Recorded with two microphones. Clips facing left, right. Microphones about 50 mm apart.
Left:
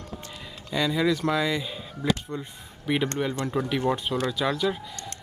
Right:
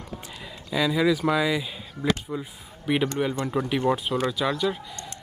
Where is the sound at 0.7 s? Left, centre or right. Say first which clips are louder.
Right 2 dB; centre.